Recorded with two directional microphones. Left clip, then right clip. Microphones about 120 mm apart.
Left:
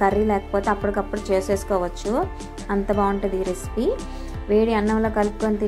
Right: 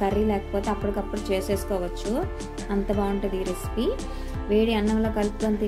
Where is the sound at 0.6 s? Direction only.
Centre (ahead or behind).